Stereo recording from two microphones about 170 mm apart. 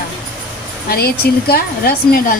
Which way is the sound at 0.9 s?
65° left (ahead or behind).